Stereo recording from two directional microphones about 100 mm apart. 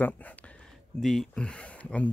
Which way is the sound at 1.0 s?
5° left (ahead or behind).